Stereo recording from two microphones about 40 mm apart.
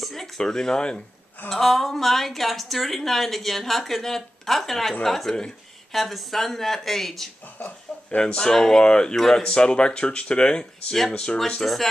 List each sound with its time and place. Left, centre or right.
0.0 s a sound: centre
0.4 s speech: centre
1.5 s a woman's voice: centre
7.5 s speech: left
8.4 s speech: centre
11.6 s a woman's voice: centre